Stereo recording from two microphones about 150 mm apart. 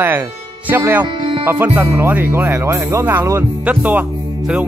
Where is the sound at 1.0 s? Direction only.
35° right (ahead or behind).